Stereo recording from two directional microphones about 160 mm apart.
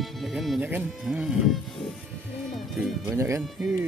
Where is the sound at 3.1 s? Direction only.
15° right (ahead or behind).